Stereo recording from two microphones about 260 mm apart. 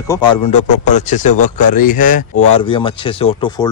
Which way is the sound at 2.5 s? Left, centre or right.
Centre.